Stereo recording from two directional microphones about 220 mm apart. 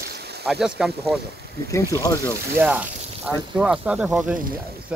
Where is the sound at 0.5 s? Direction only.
Centre (ahead or behind).